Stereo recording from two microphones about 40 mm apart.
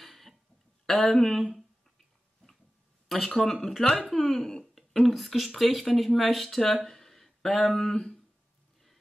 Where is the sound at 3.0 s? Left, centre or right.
Centre.